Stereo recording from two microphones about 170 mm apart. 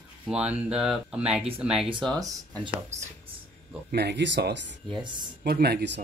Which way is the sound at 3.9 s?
75° right (ahead or behind).